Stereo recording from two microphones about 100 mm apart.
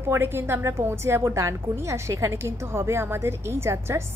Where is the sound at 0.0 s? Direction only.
20° right (ahead or behind).